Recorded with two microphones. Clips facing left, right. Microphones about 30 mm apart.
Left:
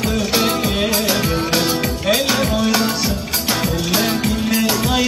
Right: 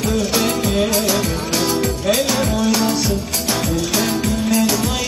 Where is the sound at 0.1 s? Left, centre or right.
Centre.